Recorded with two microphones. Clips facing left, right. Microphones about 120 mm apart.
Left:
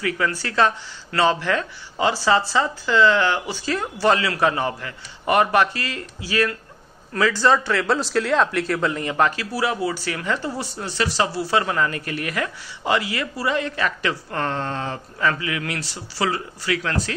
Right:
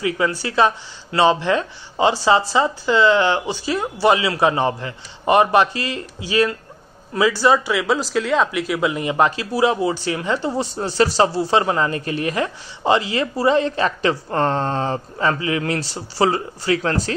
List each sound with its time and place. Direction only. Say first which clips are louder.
0.0 s speech: right 3 dB; 15° right (ahead or behind)
10.8 s speech: right 6 dB; 30° right (ahead or behind)